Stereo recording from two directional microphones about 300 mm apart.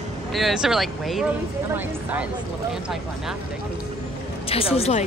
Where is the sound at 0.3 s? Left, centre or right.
Centre.